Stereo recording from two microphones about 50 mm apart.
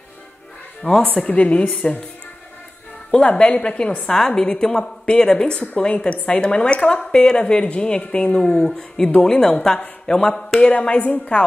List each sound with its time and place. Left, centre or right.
1.1 s speech: left
3.1 s a woman's voice: centre